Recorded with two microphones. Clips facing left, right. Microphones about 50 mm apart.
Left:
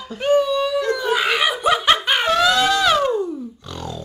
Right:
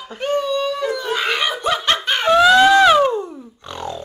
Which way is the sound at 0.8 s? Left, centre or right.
Centre.